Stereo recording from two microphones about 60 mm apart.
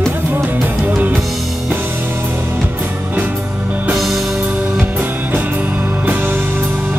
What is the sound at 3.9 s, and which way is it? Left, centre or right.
Music, centre.